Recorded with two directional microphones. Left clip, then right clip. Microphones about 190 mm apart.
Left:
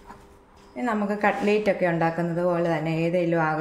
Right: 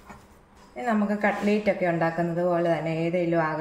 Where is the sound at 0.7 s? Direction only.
25° left (ahead or behind).